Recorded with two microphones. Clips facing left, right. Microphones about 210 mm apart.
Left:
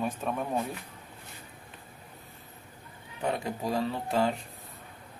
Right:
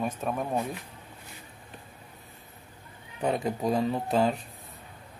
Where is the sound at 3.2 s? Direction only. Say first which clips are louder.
Right 4 dB; 20° right (ahead or behind).